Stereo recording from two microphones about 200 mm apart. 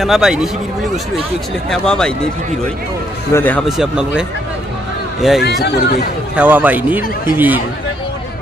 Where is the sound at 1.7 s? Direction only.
5° left (ahead or behind).